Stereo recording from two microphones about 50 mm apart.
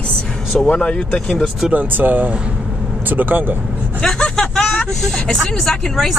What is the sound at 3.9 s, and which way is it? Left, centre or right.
Speech, centre.